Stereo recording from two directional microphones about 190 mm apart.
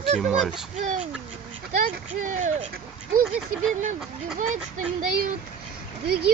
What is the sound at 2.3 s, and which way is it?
Speech, 40° right (ahead or behind).